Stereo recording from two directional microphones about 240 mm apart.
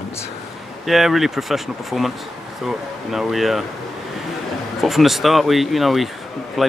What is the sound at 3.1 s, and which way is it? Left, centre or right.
Speech, centre.